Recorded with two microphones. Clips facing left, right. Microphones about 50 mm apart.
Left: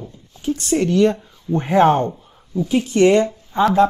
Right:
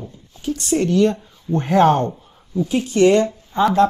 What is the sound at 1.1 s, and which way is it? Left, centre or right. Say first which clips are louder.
Speech: even; centre.